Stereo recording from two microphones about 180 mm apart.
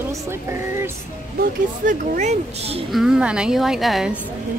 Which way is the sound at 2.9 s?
Centre (ahead or behind).